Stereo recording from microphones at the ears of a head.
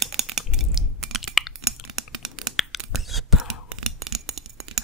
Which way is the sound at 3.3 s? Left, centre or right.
Right.